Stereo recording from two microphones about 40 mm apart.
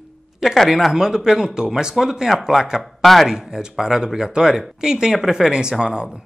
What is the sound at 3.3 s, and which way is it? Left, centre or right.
Speech, centre.